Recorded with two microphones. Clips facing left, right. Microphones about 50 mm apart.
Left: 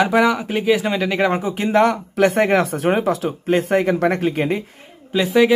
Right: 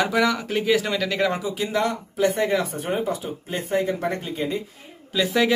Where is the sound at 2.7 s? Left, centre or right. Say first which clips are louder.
Left 7 dB; left.